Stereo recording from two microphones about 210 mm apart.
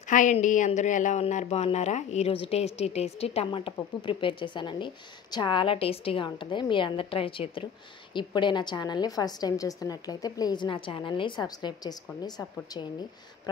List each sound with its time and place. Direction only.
0.1 s speech: 35° left (ahead or behind); by 12.4 s 20° left (ahead or behind)